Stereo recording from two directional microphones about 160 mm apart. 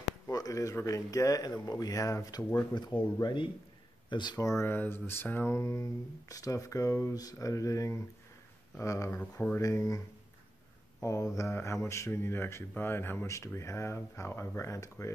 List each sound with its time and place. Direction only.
0.3 s speech: 20° left (ahead or behind)